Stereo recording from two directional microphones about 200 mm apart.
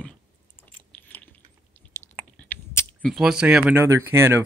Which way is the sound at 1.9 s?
10° left (ahead or behind).